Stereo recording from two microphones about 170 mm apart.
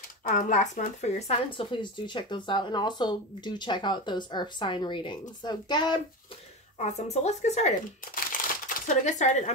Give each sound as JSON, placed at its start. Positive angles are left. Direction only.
{"t": 0.2, "sound": "speech", "side_deg": 50}
{"t": 6.8, "sound": "speech", "side_deg": 40}